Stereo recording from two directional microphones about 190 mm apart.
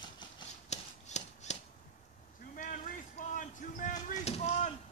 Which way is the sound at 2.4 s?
45° left (ahead or behind).